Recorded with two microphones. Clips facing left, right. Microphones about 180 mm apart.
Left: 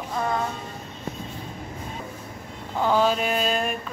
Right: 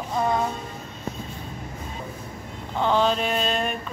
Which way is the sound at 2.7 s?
5° left (ahead or behind).